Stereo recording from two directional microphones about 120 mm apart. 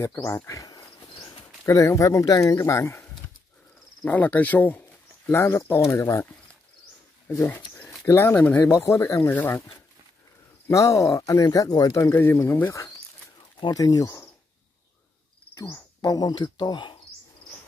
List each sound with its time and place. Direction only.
0.0 s speech: 25° left (ahead or behind)
4.0 s speech: 15° left (ahead or behind)
7.4 s speech: 15° left (ahead or behind)
10.7 s speech: 25° left (ahead or behind)
13.6 s speech: 35° left (ahead or behind)
15.5 s speech: 25° left (ahead or behind)